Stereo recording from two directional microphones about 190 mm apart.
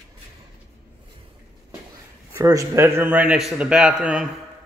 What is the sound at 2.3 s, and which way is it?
A man's voice, 15° right (ahead or behind).